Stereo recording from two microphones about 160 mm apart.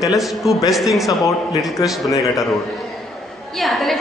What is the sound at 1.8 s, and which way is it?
Speech, 25° left (ahead or behind).